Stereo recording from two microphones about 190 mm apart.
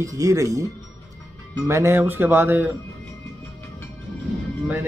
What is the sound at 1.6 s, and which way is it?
Speech, 15° right (ahead or behind).